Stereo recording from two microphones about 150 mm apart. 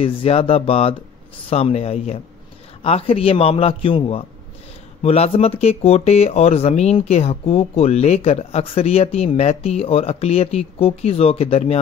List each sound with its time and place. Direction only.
0.0 s a man's voice: 40° left (ahead or behind)